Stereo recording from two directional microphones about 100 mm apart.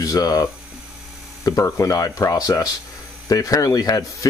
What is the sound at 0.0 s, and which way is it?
Speech, 35° left (ahead or behind).